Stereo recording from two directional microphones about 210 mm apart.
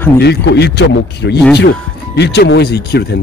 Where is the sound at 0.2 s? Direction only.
55° left (ahead or behind).